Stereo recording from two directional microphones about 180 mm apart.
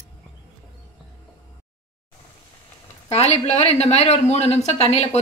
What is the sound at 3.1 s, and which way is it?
Speech, 35° left (ahead or behind).